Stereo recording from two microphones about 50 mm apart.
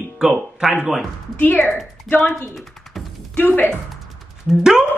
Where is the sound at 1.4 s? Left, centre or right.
Left.